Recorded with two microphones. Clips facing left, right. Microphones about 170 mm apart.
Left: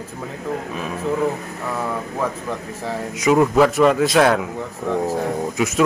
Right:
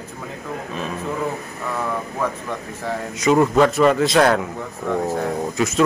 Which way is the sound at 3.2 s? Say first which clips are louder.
Left 1 dB; 5° left (ahead or behind).